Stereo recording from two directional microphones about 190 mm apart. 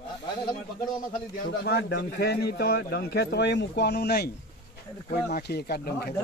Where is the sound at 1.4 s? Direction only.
60° left (ahead or behind).